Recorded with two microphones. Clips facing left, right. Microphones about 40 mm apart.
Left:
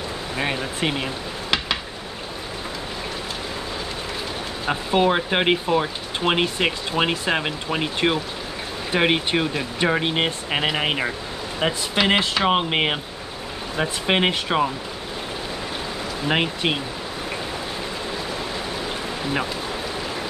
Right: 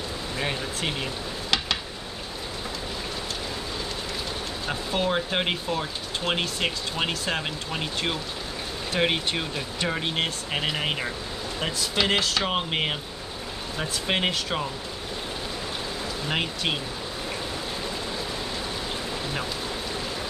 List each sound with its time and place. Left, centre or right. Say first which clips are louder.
0.4 s stir: left 5 dB; left
4.6 s speech: left 7 dB; left
16.3 s speech: left 6 dB; left